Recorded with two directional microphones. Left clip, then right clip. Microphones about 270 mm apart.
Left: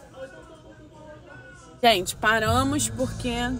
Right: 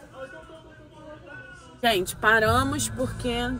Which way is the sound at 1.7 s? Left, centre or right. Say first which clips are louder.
Left 4 dB; centre.